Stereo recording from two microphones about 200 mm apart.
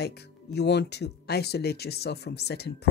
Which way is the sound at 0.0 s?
55° left (ahead or behind).